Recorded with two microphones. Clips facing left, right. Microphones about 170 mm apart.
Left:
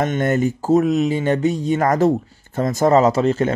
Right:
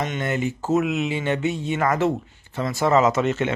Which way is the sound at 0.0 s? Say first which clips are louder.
Left 7 dB; 45° left (ahead or behind).